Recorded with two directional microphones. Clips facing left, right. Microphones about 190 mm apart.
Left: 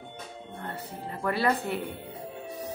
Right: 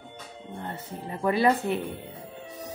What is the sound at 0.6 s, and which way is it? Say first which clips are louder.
Speech: right 2 dB; 20° right (ahead or behind).